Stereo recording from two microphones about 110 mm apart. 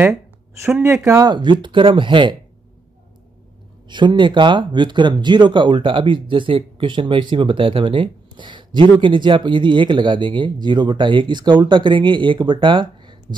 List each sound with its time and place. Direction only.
1.0 s speech: 30° right (ahead or behind)
1.3 s speech: 45° right (ahead or behind)
3.9 s speech: 45° right (ahead or behind)